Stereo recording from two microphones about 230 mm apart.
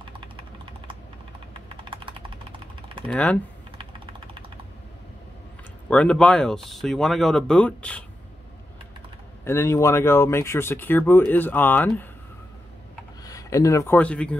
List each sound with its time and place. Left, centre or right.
1.9 s a sound: right
3.1 s speech: centre
5.9 s speech: centre
9.4 s speech: centre
13.2 s speech: centre